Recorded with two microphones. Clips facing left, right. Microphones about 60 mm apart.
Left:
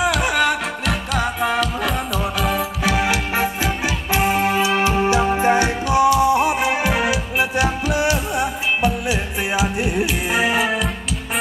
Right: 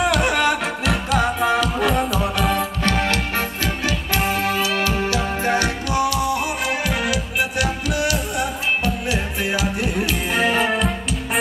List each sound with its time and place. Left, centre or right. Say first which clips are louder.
0.0 s music: even; centre